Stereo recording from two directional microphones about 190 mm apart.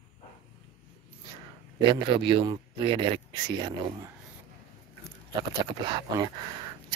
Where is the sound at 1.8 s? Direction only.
25° right (ahead or behind).